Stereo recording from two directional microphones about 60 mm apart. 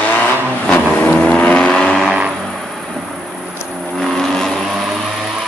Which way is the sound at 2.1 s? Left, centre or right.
Centre.